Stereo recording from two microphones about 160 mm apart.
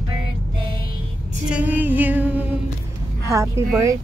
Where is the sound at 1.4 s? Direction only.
10° right (ahead or behind).